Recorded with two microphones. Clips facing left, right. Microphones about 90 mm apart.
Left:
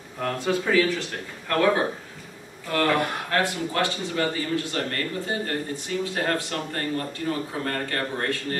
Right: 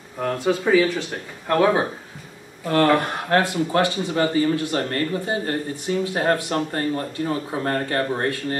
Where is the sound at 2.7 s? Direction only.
35° right (ahead or behind).